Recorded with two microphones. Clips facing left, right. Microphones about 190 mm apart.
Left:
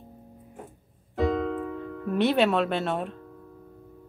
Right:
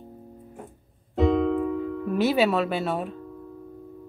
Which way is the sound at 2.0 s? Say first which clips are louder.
Even; 5° right (ahead or behind).